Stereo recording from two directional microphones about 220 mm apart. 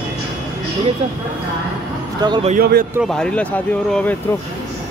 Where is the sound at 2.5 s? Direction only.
40° right (ahead or behind).